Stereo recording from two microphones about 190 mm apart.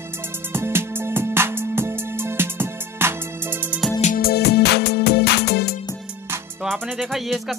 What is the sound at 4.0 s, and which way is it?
Music, 45° left (ahead or behind).